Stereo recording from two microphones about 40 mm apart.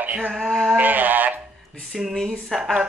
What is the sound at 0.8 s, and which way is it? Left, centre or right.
Speech, right.